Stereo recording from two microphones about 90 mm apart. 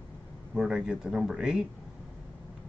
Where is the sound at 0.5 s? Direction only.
10° right (ahead or behind).